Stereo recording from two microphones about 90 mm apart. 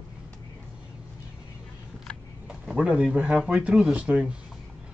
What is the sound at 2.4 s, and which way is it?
Speech, 10° right (ahead or behind).